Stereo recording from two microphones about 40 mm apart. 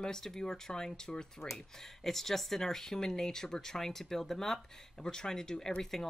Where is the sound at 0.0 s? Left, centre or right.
Centre.